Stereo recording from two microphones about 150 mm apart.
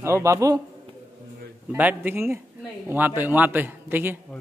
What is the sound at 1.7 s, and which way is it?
A man's voice, 10° right (ahead or behind).